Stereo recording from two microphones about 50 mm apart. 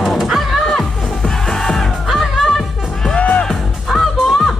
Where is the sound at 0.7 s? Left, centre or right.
Centre.